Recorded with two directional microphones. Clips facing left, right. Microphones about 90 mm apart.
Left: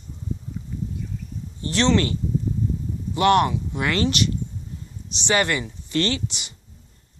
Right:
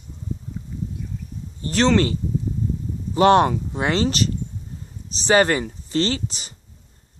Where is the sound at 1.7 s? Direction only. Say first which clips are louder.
Right 2 dB; 40° right (ahead or behind).